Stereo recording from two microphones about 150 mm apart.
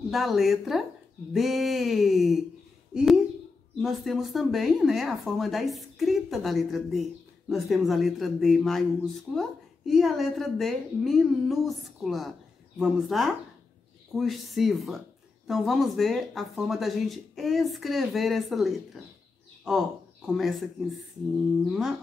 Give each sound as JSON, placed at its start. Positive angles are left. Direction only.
{"t": 0.1, "sound": "a woman's voice", "side_deg": 0}